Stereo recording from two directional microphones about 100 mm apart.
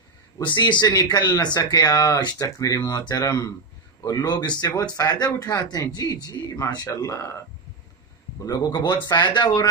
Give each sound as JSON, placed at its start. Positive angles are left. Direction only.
{"t": 0.5, "sound": "speech", "side_deg": 50}
{"t": 7.1, "sound": "speech", "side_deg": 30}
{"t": 8.5, "sound": "speech", "side_deg": 45}